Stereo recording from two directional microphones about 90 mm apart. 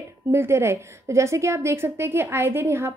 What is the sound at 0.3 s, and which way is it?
A woman's voice, 30° right (ahead or behind).